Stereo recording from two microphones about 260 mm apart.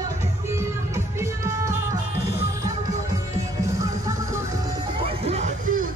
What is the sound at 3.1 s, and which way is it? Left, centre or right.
Music, centre.